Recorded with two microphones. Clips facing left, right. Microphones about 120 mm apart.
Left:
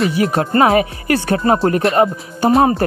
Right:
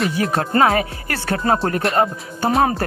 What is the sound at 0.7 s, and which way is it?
Speech, 20° left (ahead or behind).